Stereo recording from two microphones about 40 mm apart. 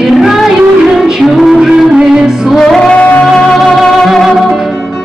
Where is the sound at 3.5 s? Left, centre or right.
Centre.